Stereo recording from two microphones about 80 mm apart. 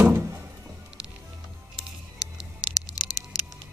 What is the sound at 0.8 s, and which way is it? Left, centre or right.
Music, centre.